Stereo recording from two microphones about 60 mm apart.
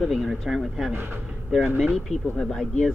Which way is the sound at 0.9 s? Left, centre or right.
Right.